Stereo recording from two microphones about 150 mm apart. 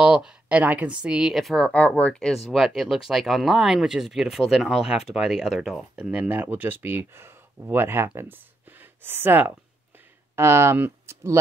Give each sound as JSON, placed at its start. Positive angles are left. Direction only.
{"t": 0.0, "sound": "a woman's voice", "side_deg": -5}